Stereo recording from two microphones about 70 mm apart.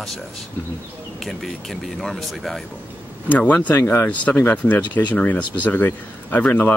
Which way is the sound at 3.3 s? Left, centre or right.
Left.